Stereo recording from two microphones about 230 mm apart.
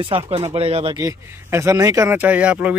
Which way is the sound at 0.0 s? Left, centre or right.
Right.